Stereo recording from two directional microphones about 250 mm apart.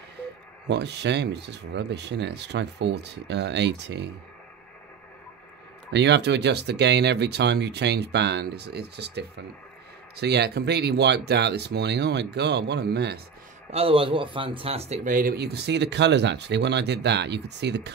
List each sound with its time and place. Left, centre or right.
0.7 s speech: right
5.9 s speech: right
13.7 s speech: right